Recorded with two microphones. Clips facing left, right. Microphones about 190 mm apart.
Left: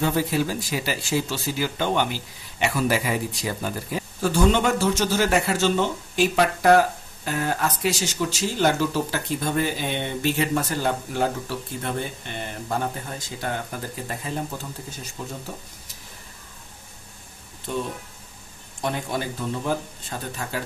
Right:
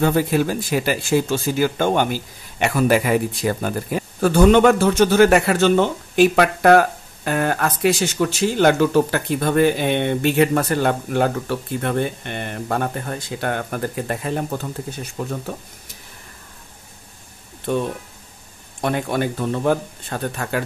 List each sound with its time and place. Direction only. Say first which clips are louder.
0.0 s speech: right 5 dB; 55° right (ahead or behind)
17.7 s speech: right 7 dB; 55° right (ahead or behind)